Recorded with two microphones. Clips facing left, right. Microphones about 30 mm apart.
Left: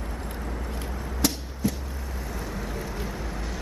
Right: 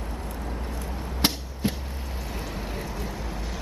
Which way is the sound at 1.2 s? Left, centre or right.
Right.